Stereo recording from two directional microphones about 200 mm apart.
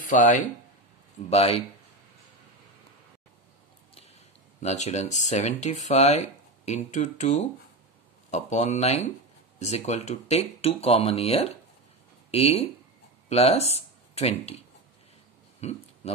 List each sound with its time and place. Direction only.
0.1 s speech: 40° left (ahead or behind)
4.6 s speech: 35° left (ahead or behind)
15.6 s speech: 30° left (ahead or behind)